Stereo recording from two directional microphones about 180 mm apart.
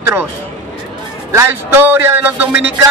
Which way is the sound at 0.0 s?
10° right (ahead or behind).